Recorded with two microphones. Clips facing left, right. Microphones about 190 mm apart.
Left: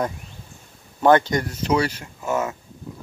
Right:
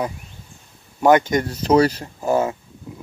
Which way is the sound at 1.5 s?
40° right (ahead or behind).